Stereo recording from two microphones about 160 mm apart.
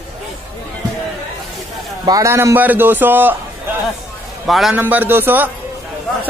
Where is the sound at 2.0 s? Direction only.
20° right (ahead or behind).